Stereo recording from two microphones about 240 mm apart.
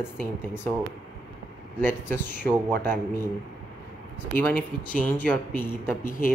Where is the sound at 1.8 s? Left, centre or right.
Centre.